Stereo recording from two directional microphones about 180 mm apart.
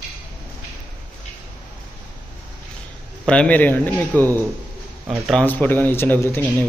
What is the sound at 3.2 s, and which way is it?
Speech, 5° left (ahead or behind).